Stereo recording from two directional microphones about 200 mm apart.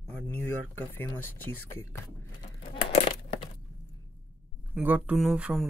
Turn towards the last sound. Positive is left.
turn(degrees=-5)  # may be behind; listen again after turning